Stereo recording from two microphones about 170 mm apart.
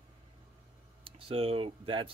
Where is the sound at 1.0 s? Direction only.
35° right (ahead or behind).